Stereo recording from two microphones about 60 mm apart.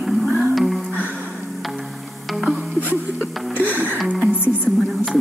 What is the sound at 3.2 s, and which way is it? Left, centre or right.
Music, left.